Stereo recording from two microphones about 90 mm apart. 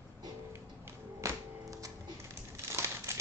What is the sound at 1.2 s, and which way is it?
Music, 40° right (ahead or behind).